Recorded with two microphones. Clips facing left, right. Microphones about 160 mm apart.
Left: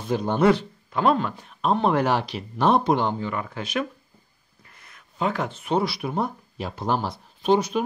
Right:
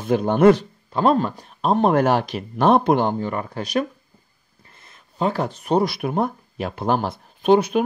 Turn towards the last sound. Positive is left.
turn(degrees=-60)  # may be behind; listen again after turning